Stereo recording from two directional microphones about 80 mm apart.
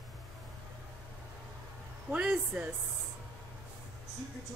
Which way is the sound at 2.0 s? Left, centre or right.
Centre.